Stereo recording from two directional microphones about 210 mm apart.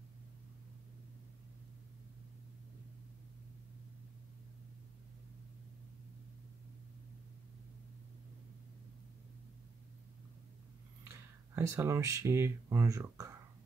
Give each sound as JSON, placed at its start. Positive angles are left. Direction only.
{"t": 11.1, "sound": "speech", "side_deg": -15}